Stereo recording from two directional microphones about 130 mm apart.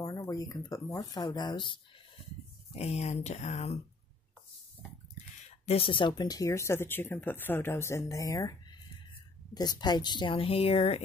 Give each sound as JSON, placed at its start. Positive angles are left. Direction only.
{"t": 0.0, "sound": "speech", "side_deg": 25}
{"t": 2.7, "sound": "speech", "side_deg": 55}
{"t": 5.7, "sound": "speech", "side_deg": 45}